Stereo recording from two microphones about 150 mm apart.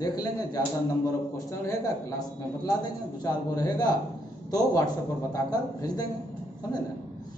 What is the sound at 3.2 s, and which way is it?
A man's voice, 25° left (ahead or behind).